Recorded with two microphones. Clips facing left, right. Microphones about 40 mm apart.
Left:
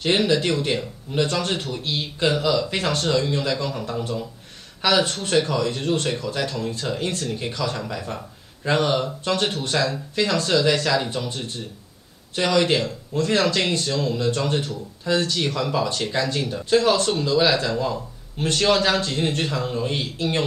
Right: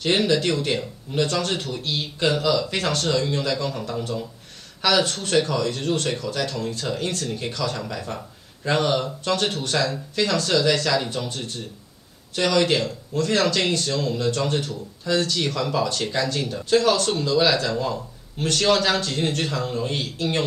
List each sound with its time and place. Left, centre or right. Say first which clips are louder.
0.0 s speech: even; centre